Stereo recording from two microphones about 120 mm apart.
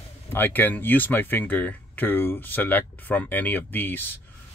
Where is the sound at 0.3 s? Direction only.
15° left (ahead or behind).